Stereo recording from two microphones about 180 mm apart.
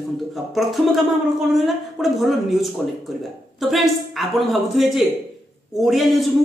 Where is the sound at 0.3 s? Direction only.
Centre (ahead or behind).